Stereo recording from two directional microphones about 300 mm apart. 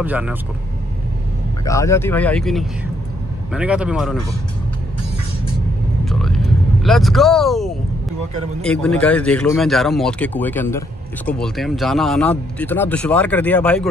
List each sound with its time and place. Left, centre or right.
0.0 s speech: centre
1.6 s speech: centre
6.0 s vehicle: centre
8.5 s speech: centre